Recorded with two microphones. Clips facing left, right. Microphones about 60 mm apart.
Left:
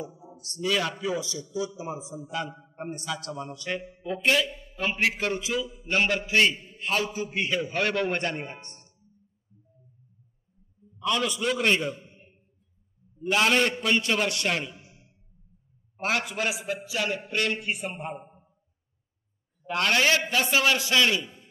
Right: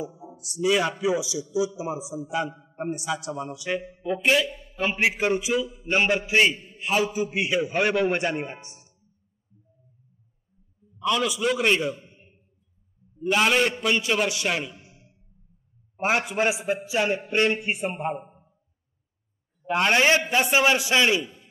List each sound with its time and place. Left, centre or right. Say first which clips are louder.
0.3 s a man's voice: right 5 dB; centre
11.1 s a man's voice: right 3 dB; centre
13.3 s a man's voice: right 2 dB; centre
16.0 s a man's voice: right 4 dB; right
18.1 s a man's voice: right 5 dB; centre
19.6 s a man's voice: right 3 dB; right